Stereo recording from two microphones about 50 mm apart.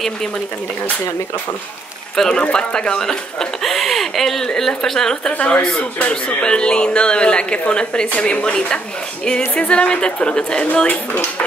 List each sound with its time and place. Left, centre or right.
2.1 s speech: centre
5.4 s speech: left